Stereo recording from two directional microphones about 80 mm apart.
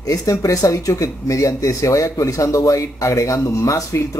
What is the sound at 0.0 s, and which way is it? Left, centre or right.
Speech, left.